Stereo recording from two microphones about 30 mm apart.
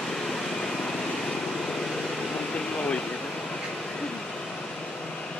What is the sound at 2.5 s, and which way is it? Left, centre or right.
Air conditioning, left.